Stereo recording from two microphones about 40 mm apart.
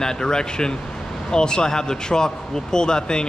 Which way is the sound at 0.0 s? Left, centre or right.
Centre.